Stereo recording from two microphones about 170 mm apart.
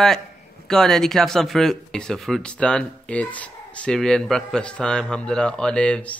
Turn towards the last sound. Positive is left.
turn(degrees=5)  # may be behind; listen again after turning